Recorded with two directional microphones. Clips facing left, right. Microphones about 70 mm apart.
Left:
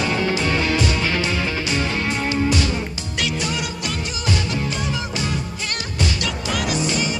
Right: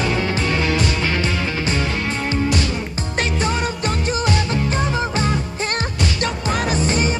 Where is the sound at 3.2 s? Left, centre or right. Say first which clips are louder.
Right 3 dB; right.